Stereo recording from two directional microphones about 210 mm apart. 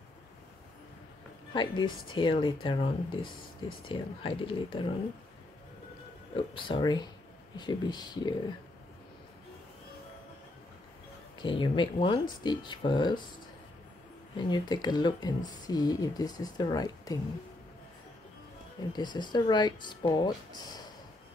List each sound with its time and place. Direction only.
1.5 s speech: 20° left (ahead or behind)
6.3 s speech: 25° left (ahead or behind)
11.4 s speech: 25° left (ahead or behind)
14.3 s speech: 20° left (ahead or behind)
18.9 s speech: 20° left (ahead or behind)